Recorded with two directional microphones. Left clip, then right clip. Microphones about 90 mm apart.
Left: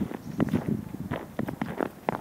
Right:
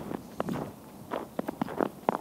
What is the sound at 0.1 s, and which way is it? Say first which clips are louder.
Walk: left 4 dB; 20° left (ahead or behind).